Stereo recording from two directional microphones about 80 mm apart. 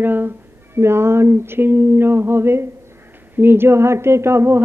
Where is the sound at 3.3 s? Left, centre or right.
Right.